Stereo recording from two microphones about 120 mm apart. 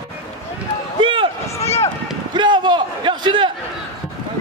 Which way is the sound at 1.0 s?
45° right (ahead or behind).